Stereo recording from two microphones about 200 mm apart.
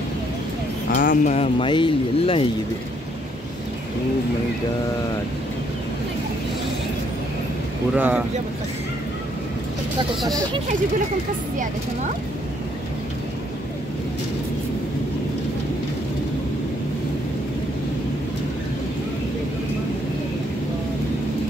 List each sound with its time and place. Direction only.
0.8 s speech: 40° left (ahead or behind)
7.9 s speech: 10° right (ahead or behind)